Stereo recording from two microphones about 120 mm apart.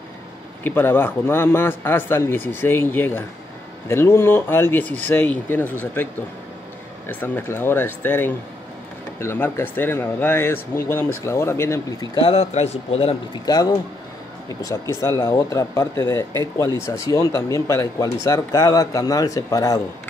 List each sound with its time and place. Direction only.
0.7 s speech: 15° left (ahead or behind)
7.1 s speech: 15° left (ahead or behind)
12.2 s speech: 55° left (ahead or behind)
13.3 s speech: 35° left (ahead or behind)